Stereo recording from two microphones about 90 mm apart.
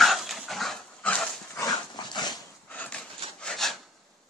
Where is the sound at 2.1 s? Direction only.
55° left (ahead or behind).